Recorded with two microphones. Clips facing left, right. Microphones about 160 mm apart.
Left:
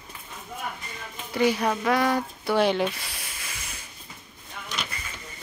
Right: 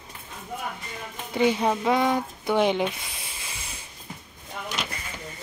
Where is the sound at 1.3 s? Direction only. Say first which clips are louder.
Right 1 dB; 20° right (ahead or behind).